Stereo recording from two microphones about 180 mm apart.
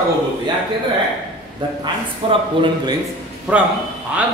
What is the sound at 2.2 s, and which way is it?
Speech, 30° right (ahead or behind).